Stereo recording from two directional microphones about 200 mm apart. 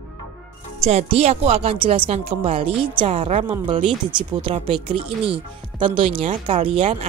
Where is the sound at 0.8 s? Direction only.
30° right (ahead or behind).